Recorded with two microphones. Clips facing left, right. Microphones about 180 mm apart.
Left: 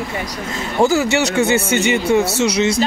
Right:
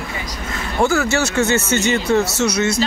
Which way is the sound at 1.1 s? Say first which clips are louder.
Left 2 dB; 15° left (ahead or behind).